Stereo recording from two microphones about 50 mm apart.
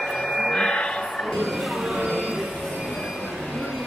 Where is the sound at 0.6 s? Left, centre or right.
Centre.